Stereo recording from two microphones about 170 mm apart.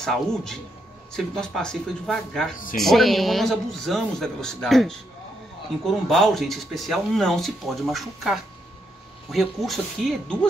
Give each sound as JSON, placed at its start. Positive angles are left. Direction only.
{"t": 0.0, "sound": "speech", "side_deg": 5}
{"t": 2.5, "sound": "speech", "side_deg": 55}
{"t": 2.8, "sound": "speech", "side_deg": 0}